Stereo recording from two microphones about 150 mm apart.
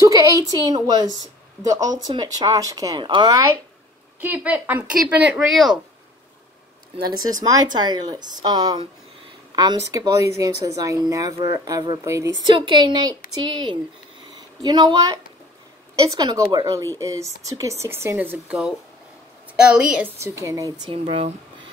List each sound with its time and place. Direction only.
0.0 s speech: 20° right (ahead or behind)
4.2 s speech: 10° right (ahead or behind)
7.0 s speech: 25° right (ahead or behind)
12.5 s a woman's voice: 30° right (ahead or behind)
14.6 s speech: 25° right (ahead or behind); by 20.1 s 5° right (ahead or behind)
20.2 s speech: 20° right (ahead or behind)
20.9 s a woman's voice: 40° right (ahead or behind)